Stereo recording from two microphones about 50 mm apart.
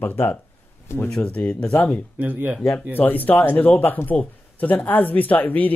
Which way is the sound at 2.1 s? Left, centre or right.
Right.